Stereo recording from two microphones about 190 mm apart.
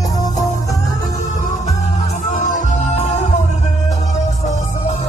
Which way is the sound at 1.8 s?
40° left (ahead or behind).